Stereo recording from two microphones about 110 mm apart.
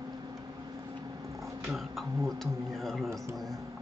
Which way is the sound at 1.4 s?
Centre (ahead or behind).